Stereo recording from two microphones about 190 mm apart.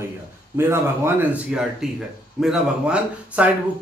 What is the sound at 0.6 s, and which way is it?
A man's voice, 10° right (ahead or behind).